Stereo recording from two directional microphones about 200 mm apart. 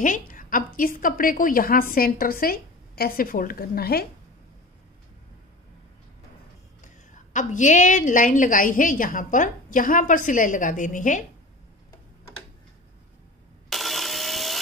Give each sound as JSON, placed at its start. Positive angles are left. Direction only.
{"t": 0.0, "sound": "a woman's voice", "side_deg": 40}
{"t": 6.8, "sound": "a woman's voice", "side_deg": 40}
{"t": 13.7, "sound": "a sound", "side_deg": 0}